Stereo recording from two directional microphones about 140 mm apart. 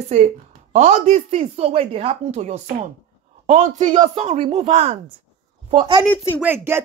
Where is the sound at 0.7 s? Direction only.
55° right (ahead or behind).